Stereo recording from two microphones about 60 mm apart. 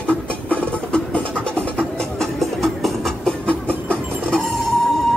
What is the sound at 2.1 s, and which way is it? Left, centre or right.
Music, centre.